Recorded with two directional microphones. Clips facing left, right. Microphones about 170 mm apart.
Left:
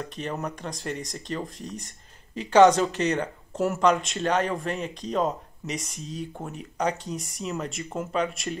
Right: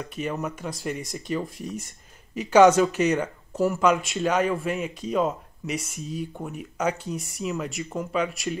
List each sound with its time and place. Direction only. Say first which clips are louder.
0.1 s speech: right 2 dB; 5° right (ahead or behind)
0.8 s speech: right 2 dB; 15° right (ahead or behind)
1.3 s speech: right 4 dB; 5° right (ahead or behind)